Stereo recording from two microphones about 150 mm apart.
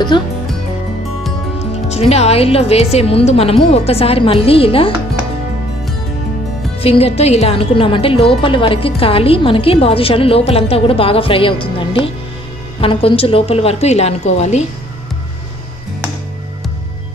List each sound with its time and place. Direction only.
0.1 s a woman's voice: 30° left (ahead or behind)
1.9 s a woman's voice: 45° left (ahead or behind)
6.8 s a woman's voice: 40° left (ahead or behind)